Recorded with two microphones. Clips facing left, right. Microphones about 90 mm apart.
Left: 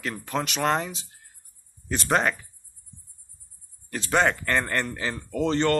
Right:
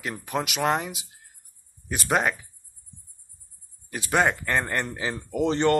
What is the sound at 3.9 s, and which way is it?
Speech, 15° right (ahead or behind).